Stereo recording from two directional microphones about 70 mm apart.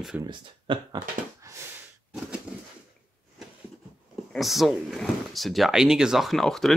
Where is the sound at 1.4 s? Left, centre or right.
Right.